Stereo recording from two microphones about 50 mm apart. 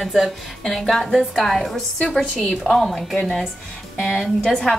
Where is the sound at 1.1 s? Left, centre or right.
Centre.